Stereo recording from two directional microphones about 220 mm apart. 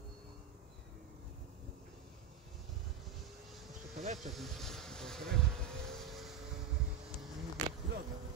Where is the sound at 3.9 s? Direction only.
35° right (ahead or behind).